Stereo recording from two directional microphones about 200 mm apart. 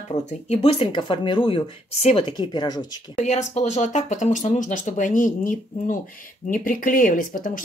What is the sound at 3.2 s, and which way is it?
Speech, 35° left (ahead or behind).